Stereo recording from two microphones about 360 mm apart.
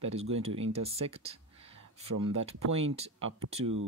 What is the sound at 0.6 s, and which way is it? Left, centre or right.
Speech, centre.